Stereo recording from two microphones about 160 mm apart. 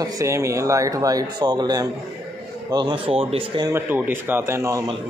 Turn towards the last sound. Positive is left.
turn(degrees=-20)  # may be behind; listen again after turning